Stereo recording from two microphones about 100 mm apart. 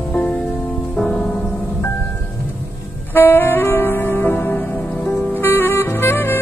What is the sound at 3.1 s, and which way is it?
Music, 20° left (ahead or behind).